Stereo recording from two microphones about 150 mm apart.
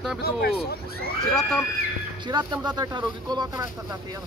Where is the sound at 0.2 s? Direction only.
90° left.